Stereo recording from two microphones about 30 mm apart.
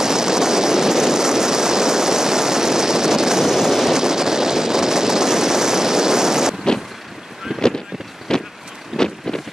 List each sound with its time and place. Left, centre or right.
0.0 s vehicle: centre
8.3 s boat: centre
8.9 s wind: centre